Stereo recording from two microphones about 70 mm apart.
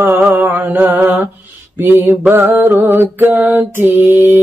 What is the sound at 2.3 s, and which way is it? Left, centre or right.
Mantra, right.